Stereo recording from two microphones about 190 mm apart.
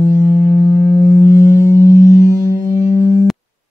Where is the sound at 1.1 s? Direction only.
10° right (ahead or behind).